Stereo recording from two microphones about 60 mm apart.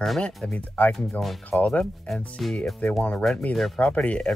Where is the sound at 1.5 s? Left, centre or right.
Left.